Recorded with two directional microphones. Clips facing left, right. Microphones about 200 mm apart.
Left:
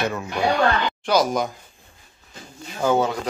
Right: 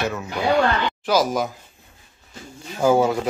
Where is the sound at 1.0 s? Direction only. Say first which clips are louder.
Even; centre (ahead or behind).